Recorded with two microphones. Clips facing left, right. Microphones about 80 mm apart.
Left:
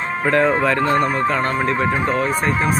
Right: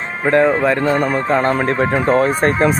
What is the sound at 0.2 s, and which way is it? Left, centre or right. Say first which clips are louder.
Speech: right 3 dB; centre.